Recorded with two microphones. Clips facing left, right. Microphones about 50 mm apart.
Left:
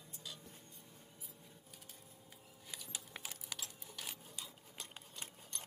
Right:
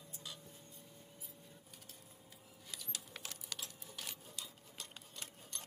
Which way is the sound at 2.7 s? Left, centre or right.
Centre.